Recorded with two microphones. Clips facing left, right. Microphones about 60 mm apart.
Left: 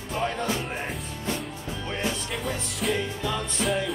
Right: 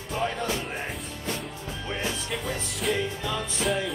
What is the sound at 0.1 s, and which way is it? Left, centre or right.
Music, centre.